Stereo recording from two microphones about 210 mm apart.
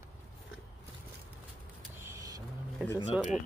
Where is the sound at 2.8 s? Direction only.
5° right (ahead or behind).